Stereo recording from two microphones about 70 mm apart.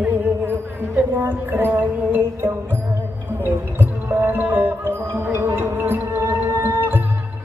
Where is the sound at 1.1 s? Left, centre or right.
Right.